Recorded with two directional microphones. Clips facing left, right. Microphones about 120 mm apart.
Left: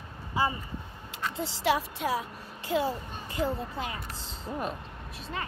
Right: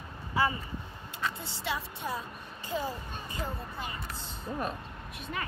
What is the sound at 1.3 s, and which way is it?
A child's voice, 90° left.